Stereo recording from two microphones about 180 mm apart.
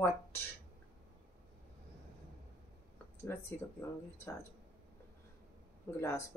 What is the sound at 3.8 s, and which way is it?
Speech, 15° left (ahead or behind).